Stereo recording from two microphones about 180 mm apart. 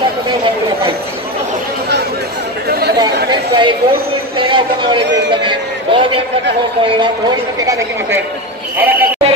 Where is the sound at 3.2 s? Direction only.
25° right (ahead or behind).